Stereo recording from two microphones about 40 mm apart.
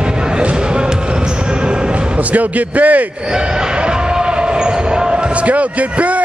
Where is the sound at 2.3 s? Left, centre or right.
Right.